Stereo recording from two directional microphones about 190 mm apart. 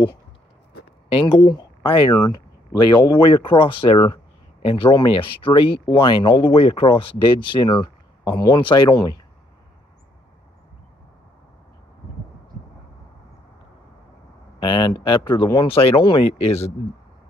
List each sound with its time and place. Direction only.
1.0 s speech: 30° left (ahead or behind)
14.6 s speech: 25° left (ahead or behind)